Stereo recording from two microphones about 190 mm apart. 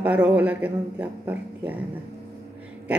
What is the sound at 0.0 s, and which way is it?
Speech, 5° right (ahead or behind).